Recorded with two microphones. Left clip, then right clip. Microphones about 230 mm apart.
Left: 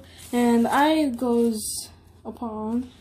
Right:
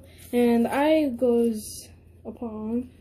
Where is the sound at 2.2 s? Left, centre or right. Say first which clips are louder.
Left 3 dB; left.